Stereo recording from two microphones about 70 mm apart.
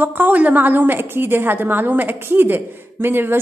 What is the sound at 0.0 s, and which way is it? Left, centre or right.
A woman's voice, right.